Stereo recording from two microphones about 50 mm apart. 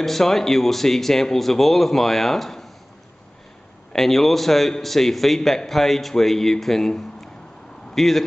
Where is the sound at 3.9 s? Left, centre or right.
Centre.